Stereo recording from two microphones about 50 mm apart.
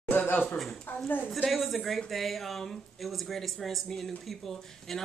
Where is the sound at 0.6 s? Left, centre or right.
Centre.